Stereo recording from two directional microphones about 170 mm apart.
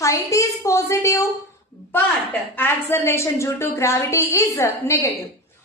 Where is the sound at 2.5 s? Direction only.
15° left (ahead or behind).